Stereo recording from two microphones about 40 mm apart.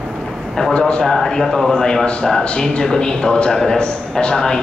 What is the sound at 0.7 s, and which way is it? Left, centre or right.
Speech, left.